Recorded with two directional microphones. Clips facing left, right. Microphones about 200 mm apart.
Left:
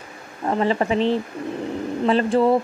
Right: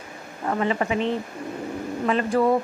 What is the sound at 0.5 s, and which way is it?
Speech, 30° left (ahead or behind).